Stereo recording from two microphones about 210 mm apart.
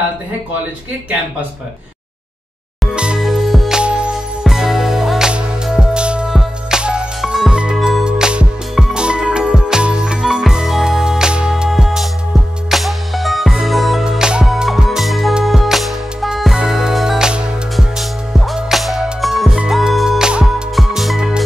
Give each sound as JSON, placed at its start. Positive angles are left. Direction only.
{"t": 2.8, "sound": "music", "side_deg": -5}